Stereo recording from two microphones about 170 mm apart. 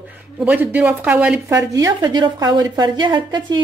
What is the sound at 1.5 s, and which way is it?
A woman's voice, 20° right (ahead or behind).